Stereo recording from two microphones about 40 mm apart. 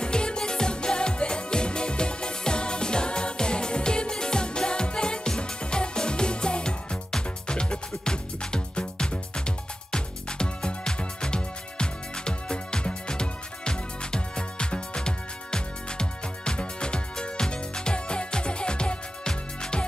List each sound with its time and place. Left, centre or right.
0.0 s music: left